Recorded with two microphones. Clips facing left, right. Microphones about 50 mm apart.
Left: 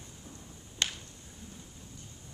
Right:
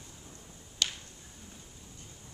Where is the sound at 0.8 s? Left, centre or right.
Left.